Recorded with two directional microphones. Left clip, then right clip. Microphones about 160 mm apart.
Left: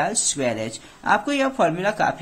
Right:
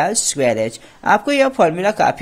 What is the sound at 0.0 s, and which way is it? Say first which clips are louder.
Speech: right 6 dB; 40° right (ahead or behind).